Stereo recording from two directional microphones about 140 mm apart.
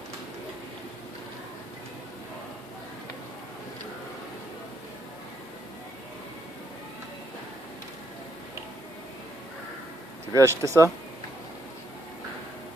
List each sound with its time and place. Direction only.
10.3 s speech: 20° right (ahead or behind)